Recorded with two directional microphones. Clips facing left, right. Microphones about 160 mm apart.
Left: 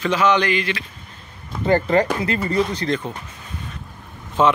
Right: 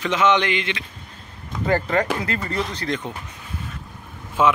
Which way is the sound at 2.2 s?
15° left (ahead or behind).